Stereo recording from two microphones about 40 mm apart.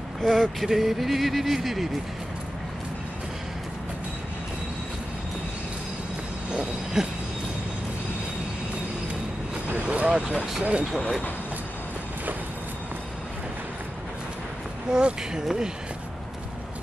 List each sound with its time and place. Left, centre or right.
0.2 s speech: centre
6.5 s a sound: centre
9.8 s speech: right
14.9 s speech: right